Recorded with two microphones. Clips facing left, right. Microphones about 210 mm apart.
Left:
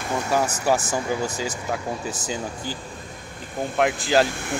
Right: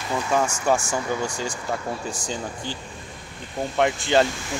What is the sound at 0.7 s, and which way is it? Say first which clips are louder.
Speech: even; 10° left (ahead or behind).